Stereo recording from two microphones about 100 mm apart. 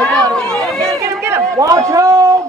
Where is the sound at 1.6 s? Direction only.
35° right (ahead or behind).